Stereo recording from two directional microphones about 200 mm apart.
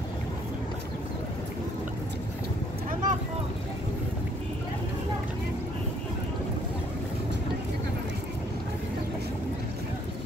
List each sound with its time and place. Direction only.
2.9 s vehicle: 40° right (ahead or behind)